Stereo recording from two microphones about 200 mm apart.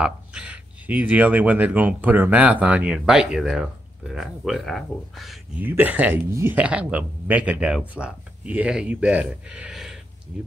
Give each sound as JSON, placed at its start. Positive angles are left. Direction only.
{"t": 0.0, "sound": "speech", "side_deg": -5}